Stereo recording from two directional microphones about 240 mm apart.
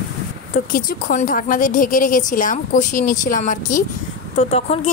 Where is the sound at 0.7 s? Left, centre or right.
Left.